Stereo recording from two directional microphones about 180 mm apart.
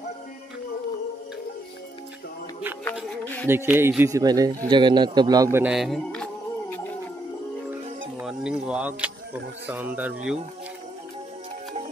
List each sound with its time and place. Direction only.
3.4 s a man's voice: 10° right (ahead or behind)
5.7 s a sound: centre (ahead or behind)
8.2 s speech: 5° right (ahead or behind)